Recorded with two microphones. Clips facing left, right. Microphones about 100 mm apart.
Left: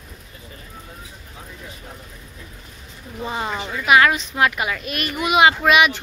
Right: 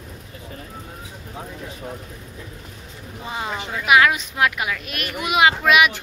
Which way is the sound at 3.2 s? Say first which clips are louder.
Left 2 dB; 5° right (ahead or behind).